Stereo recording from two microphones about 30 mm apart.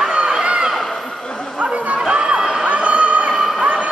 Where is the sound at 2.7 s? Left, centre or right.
Right.